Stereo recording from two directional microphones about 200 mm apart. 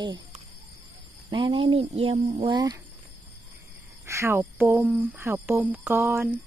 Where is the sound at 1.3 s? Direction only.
20° right (ahead or behind).